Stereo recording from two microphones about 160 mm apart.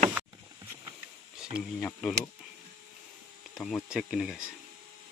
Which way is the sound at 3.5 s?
Centre (ahead or behind).